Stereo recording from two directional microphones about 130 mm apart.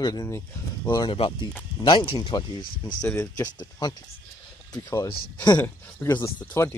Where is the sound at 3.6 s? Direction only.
35° left (ahead or behind).